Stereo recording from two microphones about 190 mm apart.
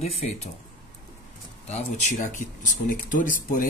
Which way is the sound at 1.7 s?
40° left (ahead or behind).